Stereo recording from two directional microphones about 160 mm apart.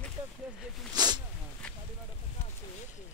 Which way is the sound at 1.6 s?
5° left (ahead or behind).